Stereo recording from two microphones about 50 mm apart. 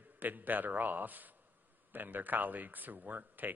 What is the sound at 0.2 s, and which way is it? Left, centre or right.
A man's voice, right.